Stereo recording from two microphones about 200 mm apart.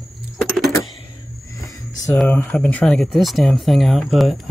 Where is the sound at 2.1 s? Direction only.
10° left (ahead or behind).